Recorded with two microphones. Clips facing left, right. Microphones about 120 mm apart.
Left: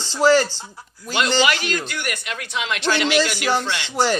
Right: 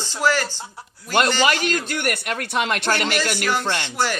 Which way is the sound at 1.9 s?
55° right (ahead or behind).